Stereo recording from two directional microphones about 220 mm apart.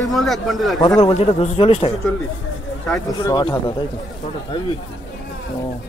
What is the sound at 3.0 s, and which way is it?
Speech, 20° left (ahead or behind).